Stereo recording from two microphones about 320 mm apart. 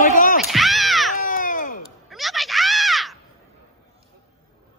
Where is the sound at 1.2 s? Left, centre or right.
Left.